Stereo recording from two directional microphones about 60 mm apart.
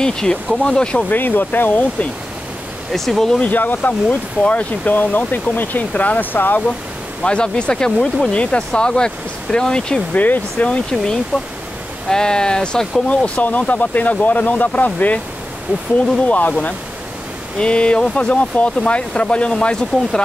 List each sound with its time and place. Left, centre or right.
0.0 s speech: centre
1.1 s speech: left
2.9 s speech: centre
3.3 s speech: left
7.2 s speech: centre
10.1 s speech: left; by 13.0 s centre
13.1 s speech: left
16.3 s speech: left